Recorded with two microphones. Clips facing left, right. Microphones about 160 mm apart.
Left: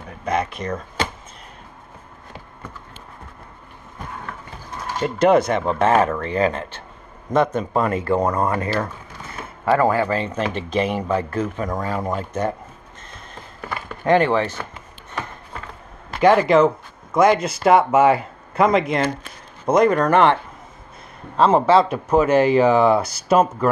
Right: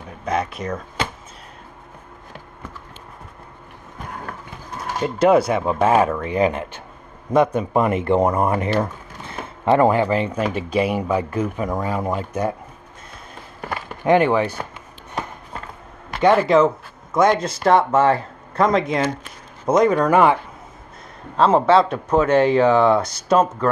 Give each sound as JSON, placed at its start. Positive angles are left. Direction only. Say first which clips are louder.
{"t": 0.2, "sound": "speech", "louder": "even", "side_deg": 0}
{"t": 5.0, "sound": "speech", "louder": "even", "side_deg": -5}
{"t": 9.7, "sound": "speech", "louder": "right 2 dB", "side_deg": -20}
{"t": 14.0, "sound": "speech", "louder": "right 1 dB", "side_deg": -15}
{"t": 16.2, "sound": "speech", "louder": "left 1 dB", "side_deg": 0}
{"t": 21.4, "sound": "speech", "louder": "even", "side_deg": 0}